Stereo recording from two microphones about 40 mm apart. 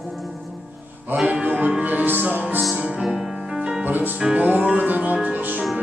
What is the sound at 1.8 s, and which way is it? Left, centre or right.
Music, right.